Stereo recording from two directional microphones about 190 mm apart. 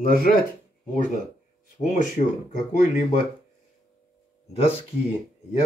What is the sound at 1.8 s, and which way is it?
Speech, 40° left (ahead or behind).